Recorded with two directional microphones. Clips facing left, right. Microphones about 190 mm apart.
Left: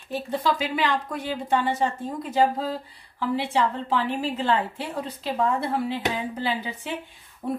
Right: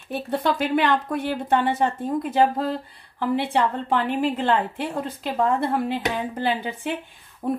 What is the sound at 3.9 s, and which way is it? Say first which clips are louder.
A woman's voice: right 3 dB; 55° right (ahead or behind).